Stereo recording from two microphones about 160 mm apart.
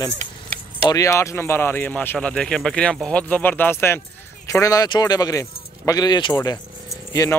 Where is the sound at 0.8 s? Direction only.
20° left (ahead or behind).